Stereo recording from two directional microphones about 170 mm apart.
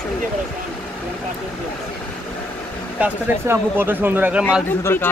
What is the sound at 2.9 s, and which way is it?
Speech, 10° right (ahead or behind).